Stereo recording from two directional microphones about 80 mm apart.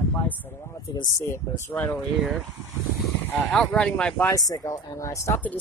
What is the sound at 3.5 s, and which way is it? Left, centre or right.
Speech, centre.